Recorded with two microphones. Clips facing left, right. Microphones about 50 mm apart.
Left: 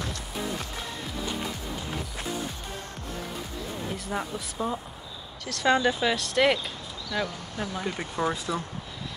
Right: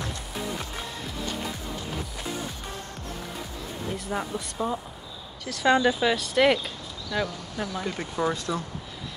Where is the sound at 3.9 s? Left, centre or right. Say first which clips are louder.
Right 3 dB; centre.